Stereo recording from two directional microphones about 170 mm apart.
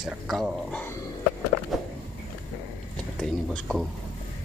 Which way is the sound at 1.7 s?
Centre (ahead or behind).